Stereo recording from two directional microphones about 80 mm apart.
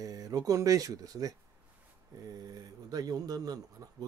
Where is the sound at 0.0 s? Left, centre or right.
Right.